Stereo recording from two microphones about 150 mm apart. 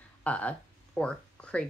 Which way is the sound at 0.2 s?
10° left (ahead or behind).